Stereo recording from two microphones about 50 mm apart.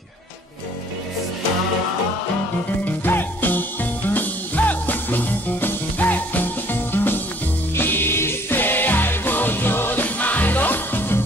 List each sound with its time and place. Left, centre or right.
2.8 s music: left